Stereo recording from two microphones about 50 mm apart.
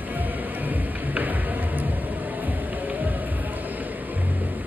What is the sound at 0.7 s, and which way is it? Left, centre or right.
Music, right.